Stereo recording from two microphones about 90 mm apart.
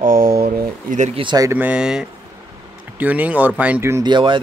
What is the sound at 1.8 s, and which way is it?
Speech, 5° right (ahead or behind).